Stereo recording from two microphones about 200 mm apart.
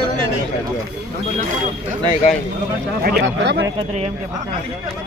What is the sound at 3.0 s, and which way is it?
Speech, 55° right (ahead or behind).